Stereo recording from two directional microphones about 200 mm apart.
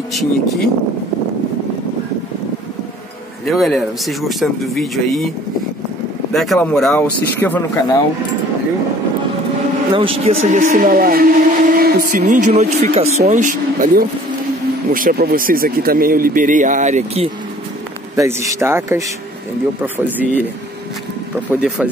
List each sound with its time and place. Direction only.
3.4 s speech: centre (ahead or behind)
6.3 s speech: centre (ahead or behind)
9.9 s a man's voice: 30° right (ahead or behind)
10.7 s speech: 50° right (ahead or behind)
18.1 s speech: 15° right (ahead or behind)
21.5 s speech: 5° right (ahead or behind)